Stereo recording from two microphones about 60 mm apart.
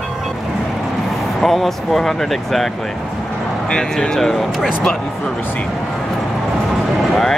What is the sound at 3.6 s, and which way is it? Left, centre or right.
Speech, centre.